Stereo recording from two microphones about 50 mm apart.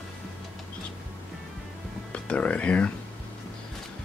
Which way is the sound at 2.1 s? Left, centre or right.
Left.